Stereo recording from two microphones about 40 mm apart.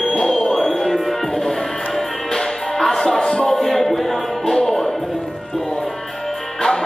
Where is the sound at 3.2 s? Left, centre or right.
Centre.